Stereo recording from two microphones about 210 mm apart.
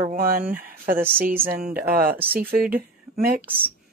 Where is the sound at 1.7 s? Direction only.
45° right (ahead or behind).